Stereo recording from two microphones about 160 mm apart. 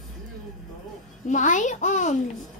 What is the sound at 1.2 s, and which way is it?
Speech, 50° left (ahead or behind).